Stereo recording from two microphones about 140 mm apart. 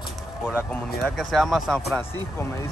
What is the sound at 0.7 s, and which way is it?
Speech, centre (ahead or behind).